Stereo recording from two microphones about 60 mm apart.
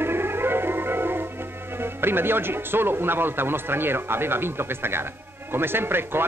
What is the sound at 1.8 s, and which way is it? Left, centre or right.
Speech, right.